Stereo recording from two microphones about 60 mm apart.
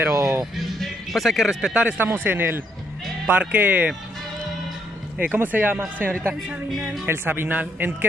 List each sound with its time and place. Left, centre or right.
0.0 s music: right
0.4 s speech: centre
1.7 s speech: right
2.0 s speech: right
5.2 s speech: right
7.1 s speech: right